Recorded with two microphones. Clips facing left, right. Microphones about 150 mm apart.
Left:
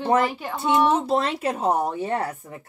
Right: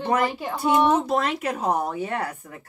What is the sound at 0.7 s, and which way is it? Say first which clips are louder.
Speech: even; 15° right (ahead or behind).